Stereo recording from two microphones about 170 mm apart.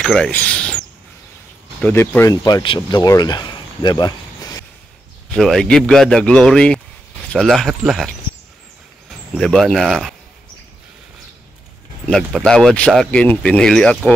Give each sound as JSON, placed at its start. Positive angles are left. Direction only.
{"t": 0.0, "sound": "speech", "side_deg": 5}
{"t": 5.3, "sound": "speech", "side_deg": 5}
{"t": 9.3, "sound": "speech", "side_deg": 0}
{"t": 12.1, "sound": "speech", "side_deg": 0}